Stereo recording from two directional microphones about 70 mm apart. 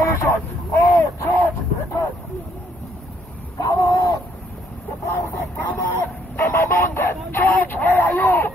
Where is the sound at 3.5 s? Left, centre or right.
Left.